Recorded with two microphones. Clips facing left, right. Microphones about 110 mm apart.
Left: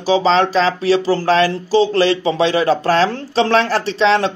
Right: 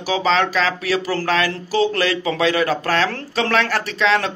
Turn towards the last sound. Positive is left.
turn(degrees=30)  # may be behind; listen again after turning